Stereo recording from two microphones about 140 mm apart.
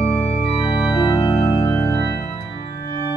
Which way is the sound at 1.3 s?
40° left (ahead or behind).